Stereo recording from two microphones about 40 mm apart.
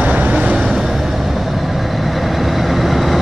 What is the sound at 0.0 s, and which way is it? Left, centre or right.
Vehicle, right.